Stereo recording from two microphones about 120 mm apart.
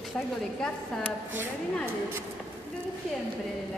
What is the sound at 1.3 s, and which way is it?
Speech, 20° right (ahead or behind).